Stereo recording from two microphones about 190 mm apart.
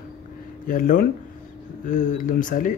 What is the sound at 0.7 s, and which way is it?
Speech, 45° left (ahead or behind).